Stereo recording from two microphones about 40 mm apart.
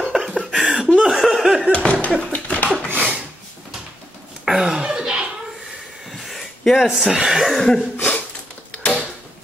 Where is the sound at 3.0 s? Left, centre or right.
Right.